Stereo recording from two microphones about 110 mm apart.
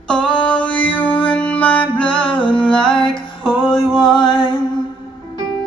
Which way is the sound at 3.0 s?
45° left (ahead or behind).